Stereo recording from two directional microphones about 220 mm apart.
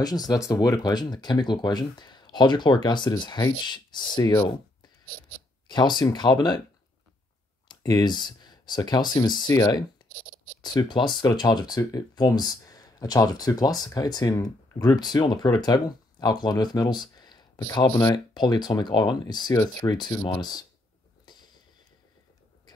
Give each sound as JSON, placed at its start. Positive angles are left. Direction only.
{"t": 0.0, "sound": "speech", "side_deg": 15}
{"t": 7.6, "sound": "speech", "side_deg": 20}